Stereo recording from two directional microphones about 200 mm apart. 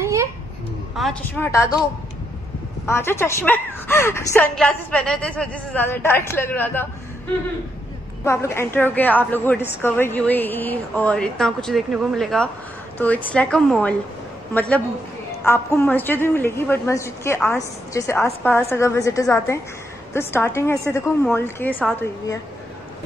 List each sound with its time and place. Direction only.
0.0 s a sound: 15° right (ahead or behind)
0.9 s a woman's voice: centre (ahead or behind)
1.4 s a woman's voice: 15° left (ahead or behind)
2.9 s a woman's voice: 10° left (ahead or behind)
8.2 s a woman's voice: 15° left (ahead or behind)